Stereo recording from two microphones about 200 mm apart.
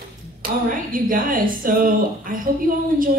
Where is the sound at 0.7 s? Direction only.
45° right (ahead or behind).